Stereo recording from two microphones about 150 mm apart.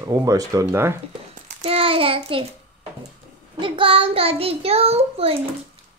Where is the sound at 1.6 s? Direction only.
40° right (ahead or behind).